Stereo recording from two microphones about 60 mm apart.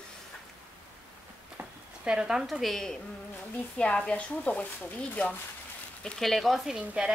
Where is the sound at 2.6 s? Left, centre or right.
Centre.